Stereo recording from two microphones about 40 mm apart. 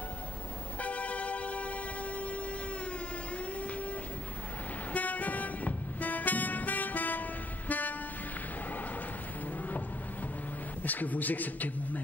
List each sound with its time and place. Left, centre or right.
0.7 s vehicle: left
4.9 s vehicle: left
10.8 s speech: left